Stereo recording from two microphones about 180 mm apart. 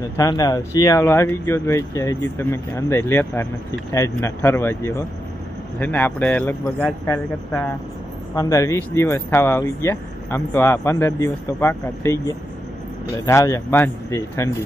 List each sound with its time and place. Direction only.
0.2 s speech: 20° left (ahead or behind)